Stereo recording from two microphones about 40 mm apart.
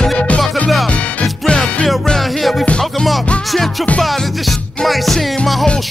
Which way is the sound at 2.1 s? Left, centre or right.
Centre.